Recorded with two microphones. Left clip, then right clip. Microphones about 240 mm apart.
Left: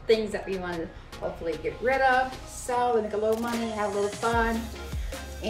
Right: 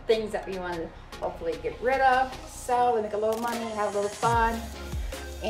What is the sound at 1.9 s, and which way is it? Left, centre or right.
Speech, centre.